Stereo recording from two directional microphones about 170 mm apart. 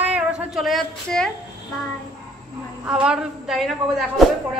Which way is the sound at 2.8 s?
5° right (ahead or behind).